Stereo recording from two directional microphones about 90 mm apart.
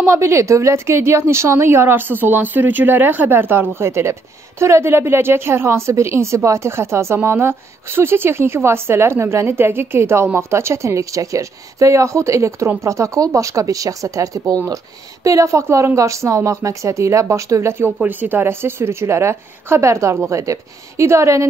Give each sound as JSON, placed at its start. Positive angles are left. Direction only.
{"t": 0.0, "sound": "a woman's voice", "side_deg": -30}